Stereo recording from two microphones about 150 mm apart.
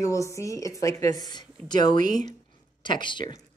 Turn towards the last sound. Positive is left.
turn(degrees=30)  # may be behind; listen again after turning